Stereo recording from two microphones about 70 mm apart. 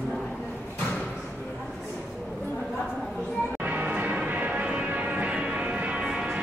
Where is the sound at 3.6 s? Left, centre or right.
Right.